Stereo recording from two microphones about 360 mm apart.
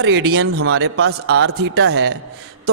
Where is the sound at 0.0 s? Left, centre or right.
Right.